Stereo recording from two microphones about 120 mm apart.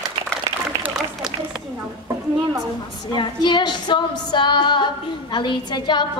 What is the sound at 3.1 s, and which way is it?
A woman's voice, 40° left (ahead or behind).